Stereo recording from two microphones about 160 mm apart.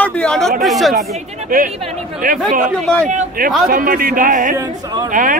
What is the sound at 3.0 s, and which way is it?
Speech, 50° right (ahead or behind).